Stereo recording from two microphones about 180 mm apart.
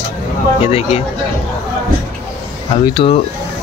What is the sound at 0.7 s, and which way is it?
Speech, 35° left (ahead or behind).